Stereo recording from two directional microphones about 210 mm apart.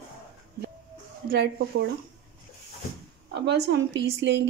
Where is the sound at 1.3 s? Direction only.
45° right (ahead or behind).